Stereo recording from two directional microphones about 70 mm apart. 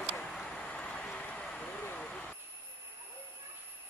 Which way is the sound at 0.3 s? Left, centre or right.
Centre.